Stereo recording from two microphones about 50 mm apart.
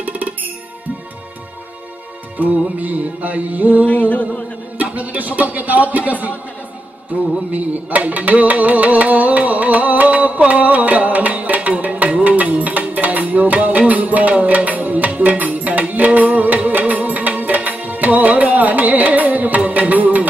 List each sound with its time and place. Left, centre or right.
2.4 s speech: right
3.8 s music: left
4.9 s speech: right
7.5 s music: right